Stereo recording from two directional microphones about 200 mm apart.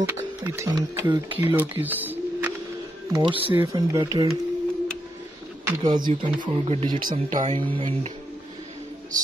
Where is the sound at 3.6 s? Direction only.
20° right (ahead or behind).